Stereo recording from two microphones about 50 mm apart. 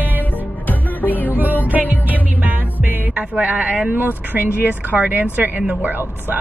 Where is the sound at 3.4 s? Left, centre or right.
Right.